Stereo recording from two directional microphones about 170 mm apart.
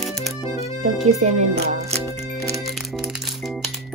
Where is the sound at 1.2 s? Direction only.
40° right (ahead or behind).